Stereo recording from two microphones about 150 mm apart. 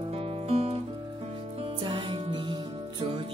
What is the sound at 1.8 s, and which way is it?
Music, 35° right (ahead or behind).